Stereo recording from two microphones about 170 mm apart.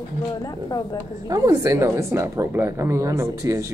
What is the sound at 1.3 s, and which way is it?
Speech, 20° right (ahead or behind).